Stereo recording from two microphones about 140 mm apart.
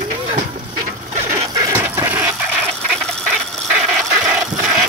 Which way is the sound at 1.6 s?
25° right (ahead or behind).